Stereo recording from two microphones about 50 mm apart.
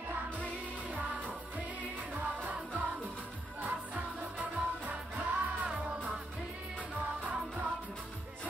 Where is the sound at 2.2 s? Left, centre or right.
Right.